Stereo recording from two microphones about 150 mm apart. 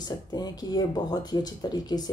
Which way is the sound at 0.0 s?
25° left (ahead or behind).